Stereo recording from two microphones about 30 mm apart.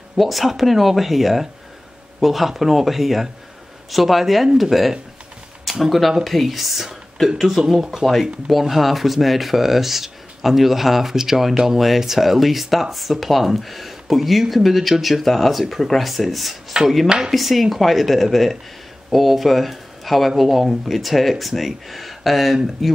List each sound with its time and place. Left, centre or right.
0.2 s speech: centre
16.8 s speech: right
17.3 s speech: centre